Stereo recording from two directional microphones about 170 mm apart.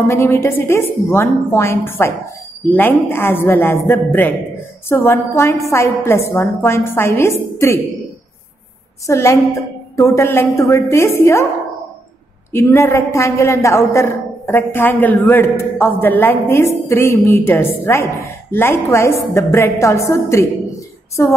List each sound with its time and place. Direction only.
0.1 s a man's voice: 15° left (ahead or behind)
9.0 s a man's voice: 15° left (ahead or behind)
12.5 s a man's voice: 15° left (ahead or behind)